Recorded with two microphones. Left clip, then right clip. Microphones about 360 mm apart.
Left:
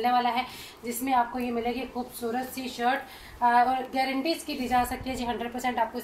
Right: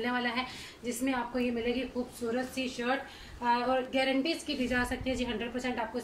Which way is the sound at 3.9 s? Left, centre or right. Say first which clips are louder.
Left 2 dB; centre.